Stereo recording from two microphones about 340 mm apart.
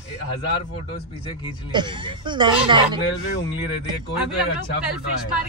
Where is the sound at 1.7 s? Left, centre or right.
Centre.